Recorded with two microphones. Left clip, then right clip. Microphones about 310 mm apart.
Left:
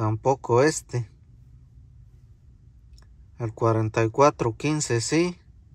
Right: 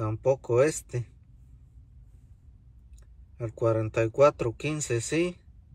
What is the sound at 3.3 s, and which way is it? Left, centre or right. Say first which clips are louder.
Speech: left 3 dB; centre.